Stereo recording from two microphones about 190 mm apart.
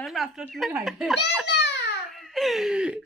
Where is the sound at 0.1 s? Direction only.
Centre (ahead or behind).